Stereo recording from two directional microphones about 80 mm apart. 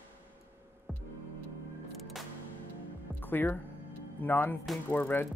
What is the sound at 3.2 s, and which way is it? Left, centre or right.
Speech, left.